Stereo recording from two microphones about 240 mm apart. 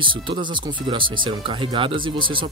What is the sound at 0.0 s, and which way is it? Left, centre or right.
Speech, right.